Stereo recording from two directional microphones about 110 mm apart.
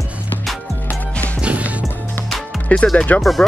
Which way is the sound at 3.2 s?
Centre (ahead or behind).